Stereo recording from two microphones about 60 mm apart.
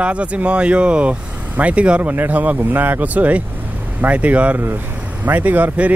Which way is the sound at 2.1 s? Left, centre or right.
Right.